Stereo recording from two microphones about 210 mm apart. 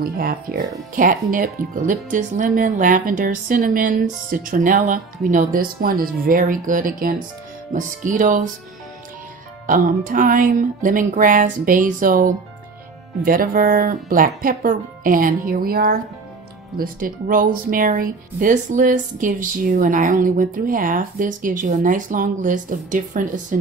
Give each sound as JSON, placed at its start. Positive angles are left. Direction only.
{"t": 0.0, "sound": "speech", "side_deg": -45}
{"t": 9.7, "sound": "speech", "side_deg": -40}